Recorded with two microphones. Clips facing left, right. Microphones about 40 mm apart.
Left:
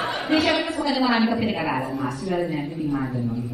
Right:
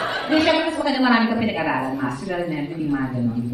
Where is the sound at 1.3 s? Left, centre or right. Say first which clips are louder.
Right 2 dB; centre.